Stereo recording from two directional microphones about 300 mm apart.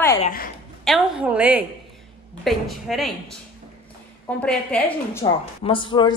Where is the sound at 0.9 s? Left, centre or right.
Centre.